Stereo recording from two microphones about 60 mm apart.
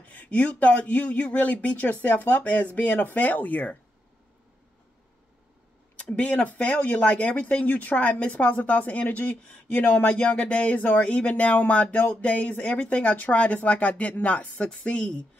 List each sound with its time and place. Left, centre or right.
0.1 s speech: left
5.9 s speech: centre
9.8 s speech: left